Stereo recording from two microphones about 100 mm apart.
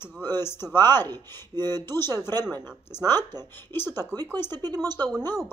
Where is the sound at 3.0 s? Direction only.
25° left (ahead or behind).